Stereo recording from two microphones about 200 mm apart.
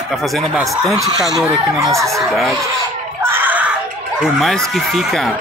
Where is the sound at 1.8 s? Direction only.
15° right (ahead or behind).